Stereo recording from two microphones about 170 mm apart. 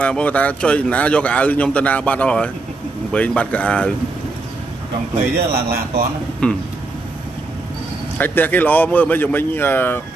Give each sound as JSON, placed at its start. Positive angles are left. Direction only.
{"t": 0.0, "sound": "a man's voice", "side_deg": 5}
{"t": 5.1, "sound": "a man's voice", "side_deg": -60}
{"t": 6.4, "sound": "speech", "side_deg": 5}
{"t": 8.2, "sound": "a man's voice", "side_deg": 10}